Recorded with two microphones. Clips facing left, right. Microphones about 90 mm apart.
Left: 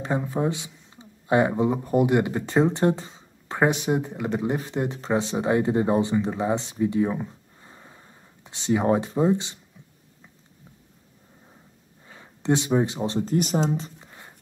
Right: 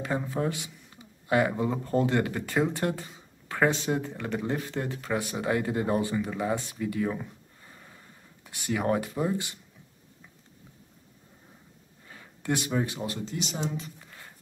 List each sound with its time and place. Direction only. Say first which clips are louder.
0.3 s speech: left 4 dB; 20° left (ahead or behind)
7.2 s gasp: left 3 dB; 25° left (ahead or behind)
12.1 s speech: left 7 dB; 25° left (ahead or behind)
13.2 s speech: left 10 dB; 45° left (ahead or behind)
13.7 s speech: left 6 dB; 35° left (ahead or behind)
14.0 s music: left 2 dB; 20° left (ahead or behind)